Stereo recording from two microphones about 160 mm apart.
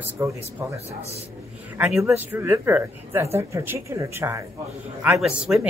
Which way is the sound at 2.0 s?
10° right (ahead or behind).